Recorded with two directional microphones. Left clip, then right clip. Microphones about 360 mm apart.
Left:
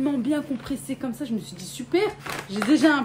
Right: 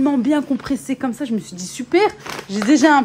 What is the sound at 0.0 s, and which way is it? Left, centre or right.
A woman's voice, centre.